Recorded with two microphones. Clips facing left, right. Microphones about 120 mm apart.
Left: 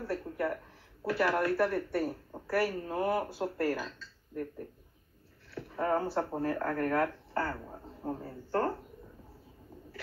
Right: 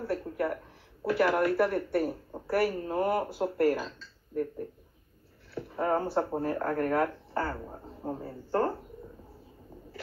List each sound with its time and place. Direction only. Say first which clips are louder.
0.0 s a sound: right 3 dB; 20° right (ahead or behind)
1.0 s a woman's voice: right 3 dB; 20° right (ahead or behind)
5.5 s speech: right 2 dB; 20° right (ahead or behind)